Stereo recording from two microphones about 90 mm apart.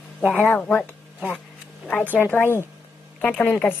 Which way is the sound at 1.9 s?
15° left (ahead or behind).